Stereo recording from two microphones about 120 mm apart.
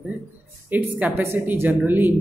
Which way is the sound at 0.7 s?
15° right (ahead or behind).